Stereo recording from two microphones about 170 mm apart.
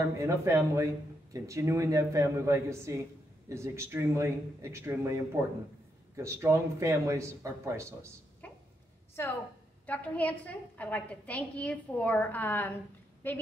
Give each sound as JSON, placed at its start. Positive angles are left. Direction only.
{"t": 0.2, "sound": "speech", "side_deg": -15}
{"t": 9.2, "sound": "a woman's voice", "side_deg": 15}